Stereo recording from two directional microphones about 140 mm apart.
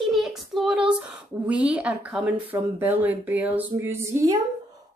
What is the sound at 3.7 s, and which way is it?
Female singing, 20° right (ahead or behind).